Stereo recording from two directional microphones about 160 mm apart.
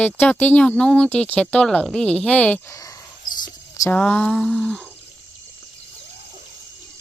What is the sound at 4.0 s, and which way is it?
Speech, 10° left (ahead or behind).